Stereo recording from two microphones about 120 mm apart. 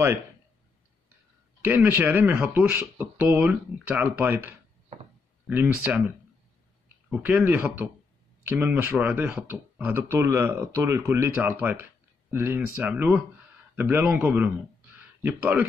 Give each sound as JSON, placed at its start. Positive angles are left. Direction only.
{"t": 1.6, "sound": "speech", "side_deg": -15}